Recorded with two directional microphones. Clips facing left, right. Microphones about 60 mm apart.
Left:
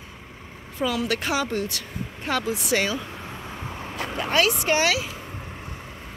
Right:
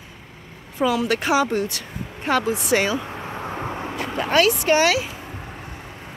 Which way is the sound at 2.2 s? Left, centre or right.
Right.